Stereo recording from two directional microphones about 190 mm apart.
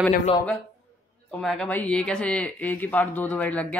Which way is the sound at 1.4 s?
5° left (ahead or behind).